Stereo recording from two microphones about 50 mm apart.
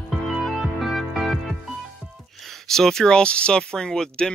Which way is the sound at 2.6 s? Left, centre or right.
Centre.